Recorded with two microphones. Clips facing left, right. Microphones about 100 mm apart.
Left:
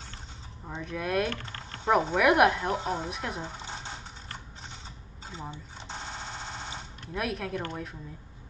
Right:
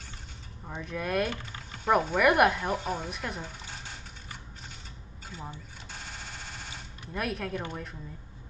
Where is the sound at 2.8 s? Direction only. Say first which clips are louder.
Left 2 dB; 25° left (ahead or behind).